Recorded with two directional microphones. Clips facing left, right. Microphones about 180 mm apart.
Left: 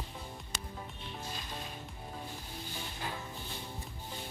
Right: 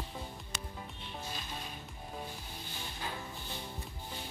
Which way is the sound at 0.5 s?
35° left (ahead or behind).